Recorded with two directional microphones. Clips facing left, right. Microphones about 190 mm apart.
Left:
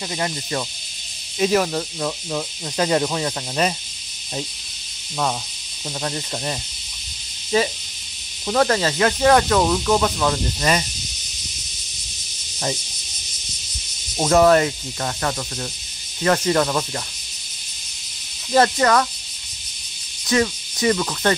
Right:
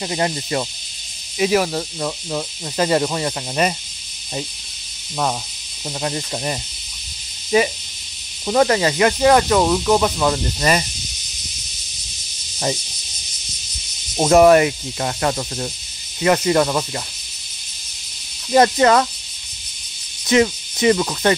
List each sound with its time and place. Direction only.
0.1 s speech: 20° right (ahead or behind)
1.4 s speech: 5° right (ahead or behind)
5.9 s cricket: 10° right (ahead or behind)
8.5 s cricket: 10° right (ahead or behind)
14.3 s speech: 15° right (ahead or behind)
16.2 s cricket: 10° right (ahead or behind)
18.5 s speech: 20° right (ahead or behind)
20.2 s speech: 20° right (ahead or behind)